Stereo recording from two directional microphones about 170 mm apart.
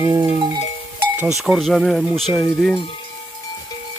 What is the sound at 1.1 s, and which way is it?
Speech, 5° right (ahead or behind).